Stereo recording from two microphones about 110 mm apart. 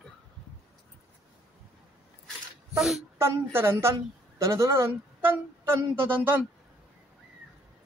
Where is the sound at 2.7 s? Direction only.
5° right (ahead or behind).